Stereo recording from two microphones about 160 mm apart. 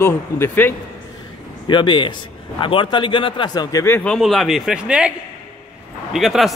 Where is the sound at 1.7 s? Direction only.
30° left (ahead or behind); by 5.1 s 5° right (ahead or behind).